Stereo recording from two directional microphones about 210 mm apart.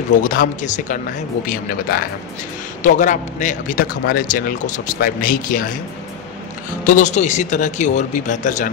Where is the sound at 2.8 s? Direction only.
40° left (ahead or behind).